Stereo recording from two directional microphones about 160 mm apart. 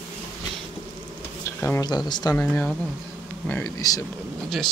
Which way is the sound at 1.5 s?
15° left (ahead or behind).